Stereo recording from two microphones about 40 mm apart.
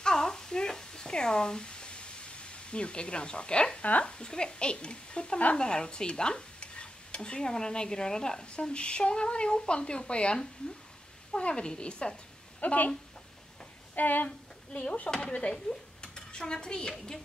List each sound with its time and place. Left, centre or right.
0.0 s a sound: centre
4.0 s speech: left
12.5 s speech: left
13.9 s speech: left
15.5 s speech: centre